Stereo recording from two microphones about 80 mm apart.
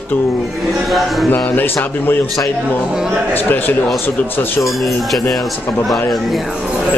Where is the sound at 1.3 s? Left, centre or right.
Left.